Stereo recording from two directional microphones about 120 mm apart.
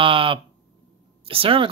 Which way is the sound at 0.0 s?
45° right (ahead or behind).